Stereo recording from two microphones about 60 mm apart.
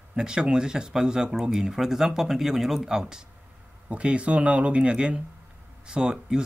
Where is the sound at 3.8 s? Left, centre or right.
Centre.